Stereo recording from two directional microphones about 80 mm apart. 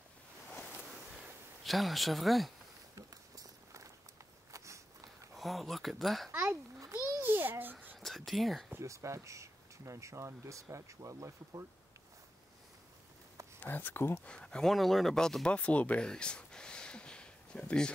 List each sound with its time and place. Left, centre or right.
1.6 s speech: centre
3.0 s walk: right
4.5 s a sound: right
5.3 s speech: centre
6.4 s a sound: right
7.2 s babbling: right
8.0 s speech: centre
8.7 s speech: right
13.6 s speech: left
14.2 s speech: centre